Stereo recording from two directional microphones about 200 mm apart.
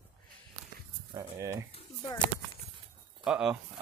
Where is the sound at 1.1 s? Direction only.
15° right (ahead or behind).